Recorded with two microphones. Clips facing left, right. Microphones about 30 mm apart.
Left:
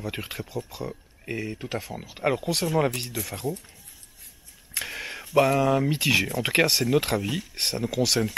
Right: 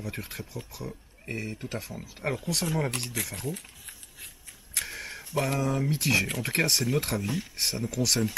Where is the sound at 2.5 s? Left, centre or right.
Left.